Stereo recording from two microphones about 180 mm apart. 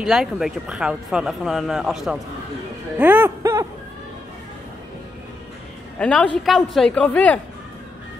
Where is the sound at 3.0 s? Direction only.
10° right (ahead or behind).